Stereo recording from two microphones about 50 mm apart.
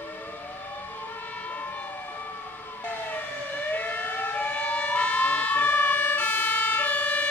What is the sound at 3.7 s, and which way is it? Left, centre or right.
Siren, left.